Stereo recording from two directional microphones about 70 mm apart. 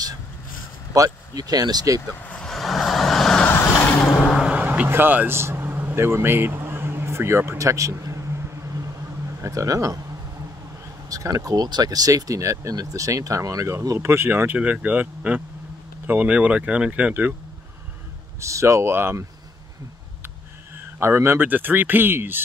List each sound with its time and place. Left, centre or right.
0.9 s speech: right
2.3 s vehicle: centre
3.4 s vehicle: left
4.5 s vehicle: centre
4.8 s vehicle: right
9.4 s speech: right
11.1 s speech: right
14.6 s speech: right
18.4 s speech: right
21.0 s speech: right